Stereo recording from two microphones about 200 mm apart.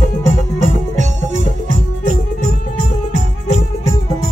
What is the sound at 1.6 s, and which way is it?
Music, 40° right (ahead or behind).